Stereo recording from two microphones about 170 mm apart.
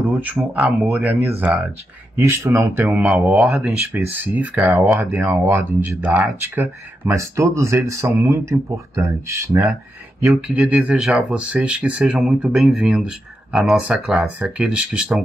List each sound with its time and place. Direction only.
0.1 s speech: 10° right (ahead or behind)
10.2 s speech: centre (ahead or behind)